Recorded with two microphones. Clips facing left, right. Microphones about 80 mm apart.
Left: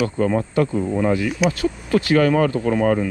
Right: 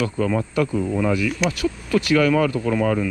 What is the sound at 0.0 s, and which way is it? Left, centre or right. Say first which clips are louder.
Speech: left 2 dB; left.